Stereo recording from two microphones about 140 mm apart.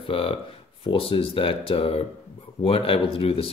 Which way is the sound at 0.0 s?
40° left (ahead or behind).